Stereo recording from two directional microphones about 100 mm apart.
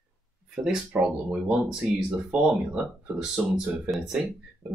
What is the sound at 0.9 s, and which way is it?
Speech, 10° right (ahead or behind).